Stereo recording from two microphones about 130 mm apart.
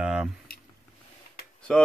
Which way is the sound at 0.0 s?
5° right (ahead or behind).